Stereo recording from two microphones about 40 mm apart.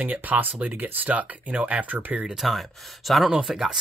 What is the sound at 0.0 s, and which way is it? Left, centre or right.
Speech, right.